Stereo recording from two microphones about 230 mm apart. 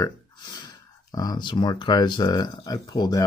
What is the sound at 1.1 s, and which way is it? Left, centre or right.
Speech, centre.